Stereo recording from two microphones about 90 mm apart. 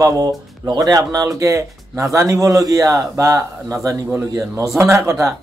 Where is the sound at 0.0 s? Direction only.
40° right (ahead or behind).